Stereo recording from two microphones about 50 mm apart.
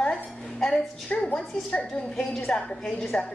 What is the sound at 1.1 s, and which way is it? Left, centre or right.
Speech, left.